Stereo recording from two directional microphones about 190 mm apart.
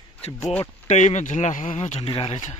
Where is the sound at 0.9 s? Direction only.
40° left (ahead or behind).